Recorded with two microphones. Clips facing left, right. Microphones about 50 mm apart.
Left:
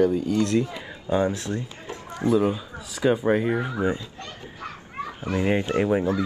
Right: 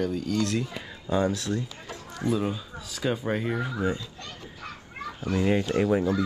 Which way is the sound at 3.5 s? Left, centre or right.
Left.